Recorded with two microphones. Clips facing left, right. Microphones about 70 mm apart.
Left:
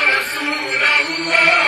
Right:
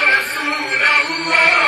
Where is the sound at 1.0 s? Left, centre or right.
Right.